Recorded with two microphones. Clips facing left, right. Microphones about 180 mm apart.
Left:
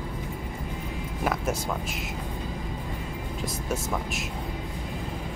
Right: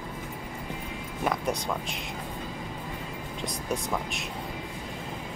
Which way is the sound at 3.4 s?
Centre (ahead or behind).